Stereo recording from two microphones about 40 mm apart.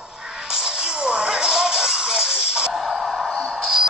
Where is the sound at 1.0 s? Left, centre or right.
Right.